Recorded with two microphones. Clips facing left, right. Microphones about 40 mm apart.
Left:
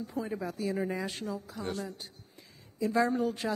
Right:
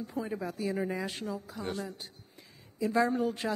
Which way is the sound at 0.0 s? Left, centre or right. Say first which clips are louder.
Even; centre.